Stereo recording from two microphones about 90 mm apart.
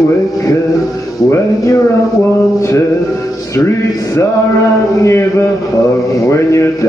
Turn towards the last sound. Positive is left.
turn(degrees=35)  # may be behind; listen again after turning